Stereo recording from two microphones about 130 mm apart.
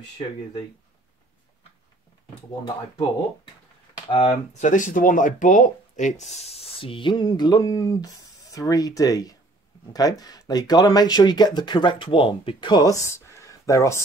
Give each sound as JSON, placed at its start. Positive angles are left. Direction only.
{"t": 4.1, "sound": "speech", "side_deg": 40}
{"t": 4.6, "sound": "speech", "side_deg": 75}